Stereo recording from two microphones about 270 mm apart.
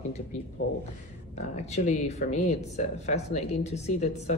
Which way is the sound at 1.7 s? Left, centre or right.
Left.